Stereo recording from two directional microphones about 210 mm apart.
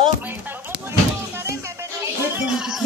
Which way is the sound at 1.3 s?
10° right (ahead or behind).